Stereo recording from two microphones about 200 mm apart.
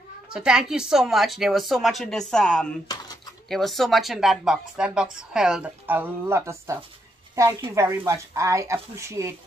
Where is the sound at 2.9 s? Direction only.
20° left (ahead or behind).